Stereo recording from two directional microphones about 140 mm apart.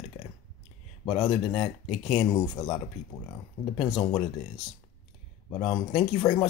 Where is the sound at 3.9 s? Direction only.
45° left (ahead or behind).